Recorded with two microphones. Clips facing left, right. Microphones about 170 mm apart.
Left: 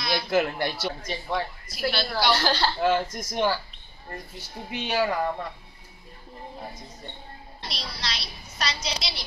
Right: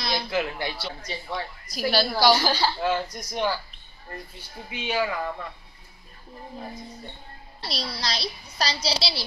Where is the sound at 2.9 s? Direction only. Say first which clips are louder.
Left 2 dB; 45° left (ahead or behind).